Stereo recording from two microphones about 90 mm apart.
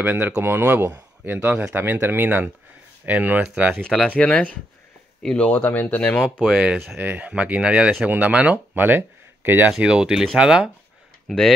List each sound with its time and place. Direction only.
0.0 s speech: 20° right (ahead or behind)
4.2 s speech: 15° left (ahead or behind)
6.4 s speech: 5° right (ahead or behind)
9.7 s speech: 10° right (ahead or behind)
11.2 s speech: 5° left (ahead or behind)